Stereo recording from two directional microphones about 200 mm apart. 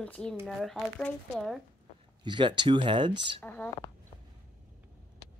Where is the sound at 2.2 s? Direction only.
25° right (ahead or behind).